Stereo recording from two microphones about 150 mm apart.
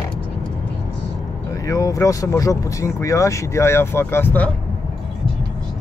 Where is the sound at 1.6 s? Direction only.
20° left (ahead or behind).